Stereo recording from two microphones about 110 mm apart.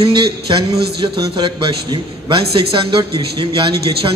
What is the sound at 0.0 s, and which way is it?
A man's voice, 45° right (ahead or behind).